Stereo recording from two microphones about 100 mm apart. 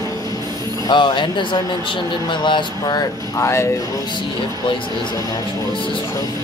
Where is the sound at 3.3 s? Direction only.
30° left (ahead or behind).